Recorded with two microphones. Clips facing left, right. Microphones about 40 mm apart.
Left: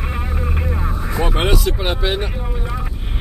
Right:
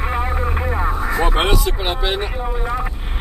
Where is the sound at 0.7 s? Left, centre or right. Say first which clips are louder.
Right 4 dB; right.